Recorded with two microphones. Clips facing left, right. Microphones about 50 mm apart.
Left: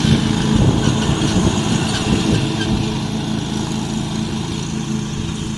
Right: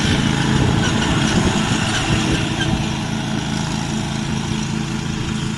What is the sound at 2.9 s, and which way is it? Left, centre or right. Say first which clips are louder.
Vehicle: left 1 dB; right.